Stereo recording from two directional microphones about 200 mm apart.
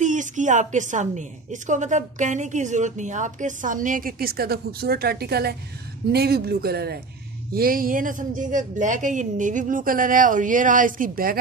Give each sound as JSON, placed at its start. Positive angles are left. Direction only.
{"t": 0.0, "sound": "speech", "side_deg": -40}